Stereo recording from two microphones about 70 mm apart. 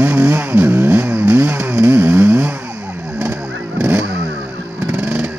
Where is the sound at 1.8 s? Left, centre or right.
Right.